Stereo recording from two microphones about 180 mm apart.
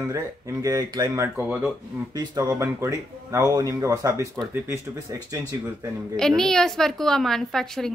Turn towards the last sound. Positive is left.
turn(degrees=0)  # may be behind; listen again after turning